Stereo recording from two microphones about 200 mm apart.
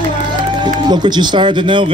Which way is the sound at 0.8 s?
20° right (ahead or behind).